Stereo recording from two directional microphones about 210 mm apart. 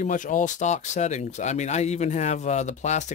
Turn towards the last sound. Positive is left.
turn(degrees=35)  # may be behind; listen again after turning